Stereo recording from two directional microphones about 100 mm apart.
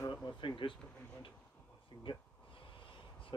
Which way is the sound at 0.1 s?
55° left (ahead or behind).